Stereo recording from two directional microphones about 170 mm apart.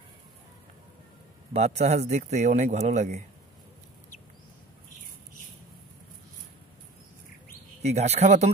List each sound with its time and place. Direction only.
1.5 s speech: 40° right (ahead or behind)
7.8 s speech: 40° right (ahead or behind)